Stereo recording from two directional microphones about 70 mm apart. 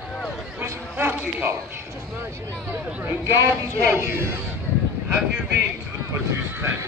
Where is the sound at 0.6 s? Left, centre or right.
Right.